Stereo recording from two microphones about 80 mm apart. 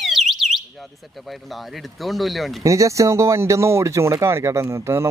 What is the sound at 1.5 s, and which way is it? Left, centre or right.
Speech, centre.